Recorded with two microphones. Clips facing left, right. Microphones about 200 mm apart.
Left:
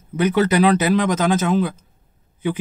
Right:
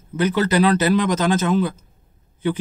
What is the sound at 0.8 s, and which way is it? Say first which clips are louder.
Speech: even; 10° left (ahead or behind).